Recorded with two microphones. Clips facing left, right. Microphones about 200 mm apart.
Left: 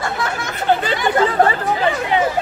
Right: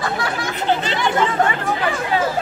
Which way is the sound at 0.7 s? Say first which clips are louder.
Left 3 dB; 50° left (ahead or behind).